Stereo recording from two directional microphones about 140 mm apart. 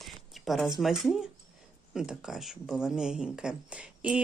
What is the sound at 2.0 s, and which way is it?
Speech, 5° right (ahead or behind).